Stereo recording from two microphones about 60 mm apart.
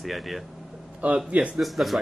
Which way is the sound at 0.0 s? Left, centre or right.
Centre.